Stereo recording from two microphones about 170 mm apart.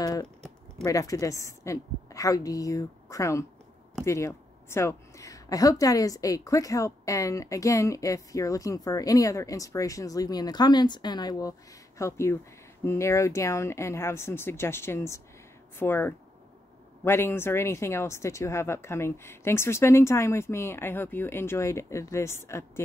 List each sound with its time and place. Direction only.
0.0 s typing: 20° left (ahead or behind)
0.8 s speech: 20° left (ahead or behind)